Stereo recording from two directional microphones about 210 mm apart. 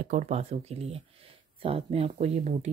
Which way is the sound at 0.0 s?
35° right (ahead or behind).